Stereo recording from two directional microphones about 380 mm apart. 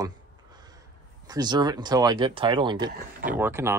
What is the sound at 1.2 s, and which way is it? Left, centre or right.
Speech, centre.